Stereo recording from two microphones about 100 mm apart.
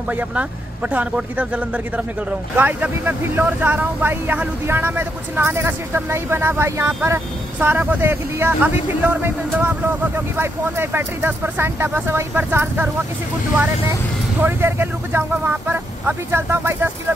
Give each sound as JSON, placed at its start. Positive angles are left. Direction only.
{"t": 0.1, "sound": "speech", "side_deg": -15}
{"t": 2.5, "sound": "speech", "side_deg": -15}
{"t": 14.4, "sound": "speech", "side_deg": -25}